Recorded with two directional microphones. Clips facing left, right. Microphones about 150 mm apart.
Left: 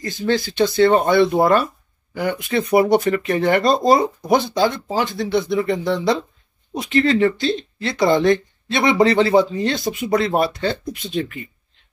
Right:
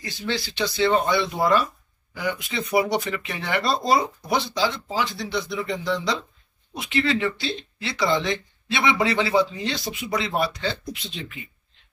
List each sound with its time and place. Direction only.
0.0 s speech: 45° left (ahead or behind)
6.7 s speech: 45° left (ahead or behind)